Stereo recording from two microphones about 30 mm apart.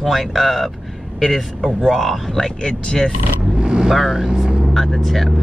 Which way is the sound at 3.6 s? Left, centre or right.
Right.